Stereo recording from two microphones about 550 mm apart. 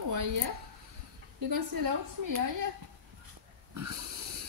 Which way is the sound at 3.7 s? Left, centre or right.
Right.